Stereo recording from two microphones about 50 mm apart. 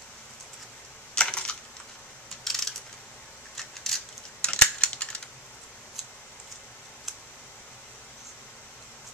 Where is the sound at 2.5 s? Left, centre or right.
Centre.